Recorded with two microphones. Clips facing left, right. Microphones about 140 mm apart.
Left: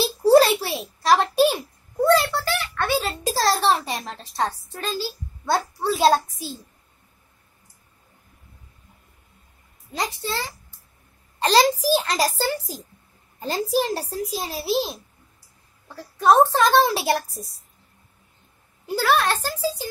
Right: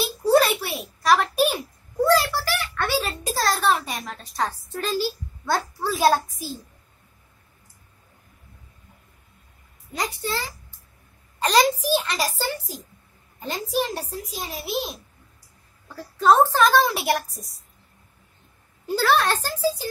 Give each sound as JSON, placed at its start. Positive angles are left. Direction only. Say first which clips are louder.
{"t": 0.0, "sound": "a sound", "louder": "left 4 dB", "side_deg": 30}
{"t": 5.4, "sound": "a child's voice", "louder": "left 2 dB", "side_deg": 20}
{"t": 9.9, "sound": "a child's voice", "louder": "even", "side_deg": 25}
{"t": 11.4, "sound": "a child's voice", "louder": "left 2 dB", "side_deg": 35}
{"t": 16.0, "sound": "a child's voice", "louder": "left 1 dB", "side_deg": 20}
{"t": 18.9, "sound": "speech", "louder": "even", "side_deg": 15}